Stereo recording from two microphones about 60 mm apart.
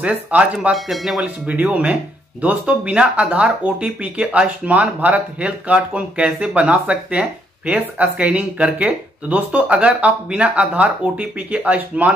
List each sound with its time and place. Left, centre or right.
0.0 s speech: right
0.6 s speech: centre
1.2 s speech: right